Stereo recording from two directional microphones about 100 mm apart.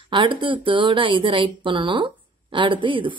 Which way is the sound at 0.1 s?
55° right (ahead or behind).